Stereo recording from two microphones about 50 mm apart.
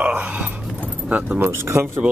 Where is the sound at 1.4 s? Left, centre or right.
Right.